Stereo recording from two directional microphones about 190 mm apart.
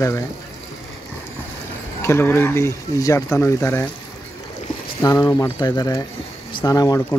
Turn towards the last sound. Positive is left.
turn(degrees=20)  # may be behind; listen again after turning